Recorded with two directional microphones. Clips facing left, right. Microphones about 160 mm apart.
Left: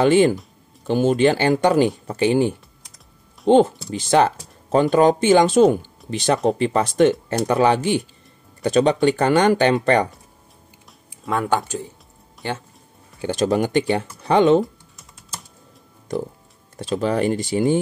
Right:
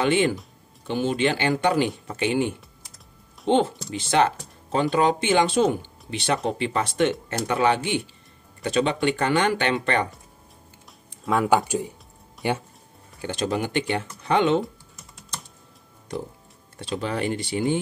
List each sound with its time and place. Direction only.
0.0 s speech: 40° left (ahead or behind)
11.2 s speech: 5° right (ahead or behind)
13.3 s speech: 40° left (ahead or behind)
14.6 s typing: centre (ahead or behind)
16.9 s speech: 40° left (ahead or behind)